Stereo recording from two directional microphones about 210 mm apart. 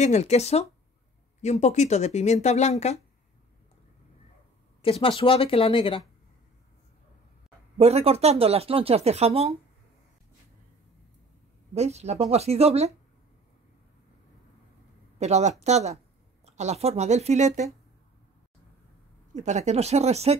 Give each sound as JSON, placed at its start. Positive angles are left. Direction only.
{"t": 0.0, "sound": "speech", "side_deg": 30}
{"t": 4.8, "sound": "speech", "side_deg": 25}
{"t": 7.7, "sound": "speech", "side_deg": -30}
{"t": 11.7, "sound": "a woman's voice", "side_deg": -30}
{"t": 15.1, "sound": "a woman's voice", "side_deg": -30}
{"t": 19.3, "sound": "a woman's voice", "side_deg": -35}